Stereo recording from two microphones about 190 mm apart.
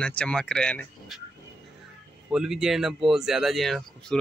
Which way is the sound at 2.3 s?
5° right (ahead or behind).